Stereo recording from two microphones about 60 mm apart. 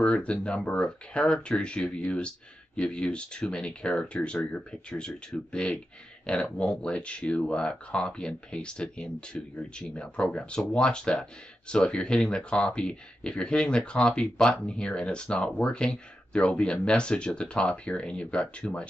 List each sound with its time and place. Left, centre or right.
0.0 s speech: centre